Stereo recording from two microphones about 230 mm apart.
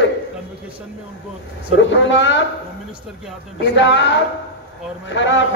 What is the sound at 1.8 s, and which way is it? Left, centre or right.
Speech, left.